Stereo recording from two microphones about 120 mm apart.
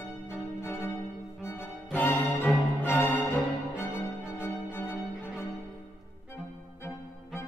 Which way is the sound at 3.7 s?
10° right (ahead or behind).